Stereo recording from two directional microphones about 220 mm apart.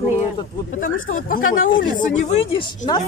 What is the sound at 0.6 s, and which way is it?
Speech, 40° left (ahead or behind).